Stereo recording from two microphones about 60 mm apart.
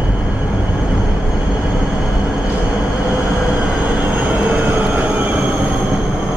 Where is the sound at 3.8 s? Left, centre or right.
Right.